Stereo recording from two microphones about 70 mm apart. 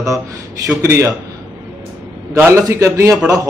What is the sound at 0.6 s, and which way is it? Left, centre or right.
Speech, right.